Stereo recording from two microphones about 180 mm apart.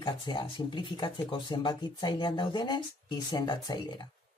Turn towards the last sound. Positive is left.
turn(degrees=25)  # may be behind; listen again after turning